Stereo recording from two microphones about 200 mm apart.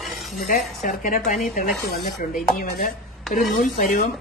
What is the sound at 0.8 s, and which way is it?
Speech, 40° left (ahead or behind).